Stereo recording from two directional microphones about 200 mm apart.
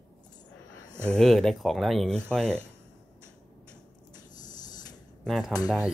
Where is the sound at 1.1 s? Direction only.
Centre (ahead or behind).